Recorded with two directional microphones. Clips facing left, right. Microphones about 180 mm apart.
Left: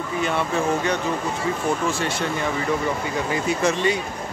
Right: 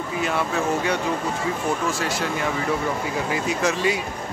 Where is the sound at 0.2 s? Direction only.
5° right (ahead or behind).